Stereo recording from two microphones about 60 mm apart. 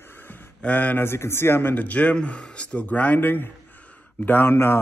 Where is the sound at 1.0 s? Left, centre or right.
Left.